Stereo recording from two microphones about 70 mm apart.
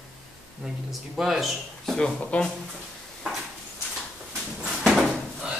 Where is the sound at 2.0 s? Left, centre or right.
Centre.